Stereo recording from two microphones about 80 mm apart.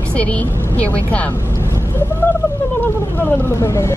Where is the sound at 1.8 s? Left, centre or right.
Left.